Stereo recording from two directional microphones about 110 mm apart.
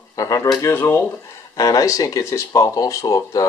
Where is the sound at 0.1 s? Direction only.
30° left (ahead or behind).